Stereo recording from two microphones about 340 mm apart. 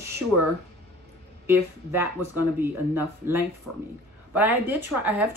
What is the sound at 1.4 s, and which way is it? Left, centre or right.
A woman's voice, centre.